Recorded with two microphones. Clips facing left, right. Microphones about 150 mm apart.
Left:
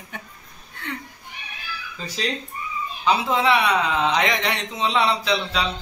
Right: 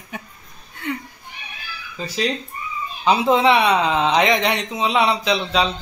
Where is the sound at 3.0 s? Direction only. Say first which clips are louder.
Right 5 dB; 20° right (ahead or behind).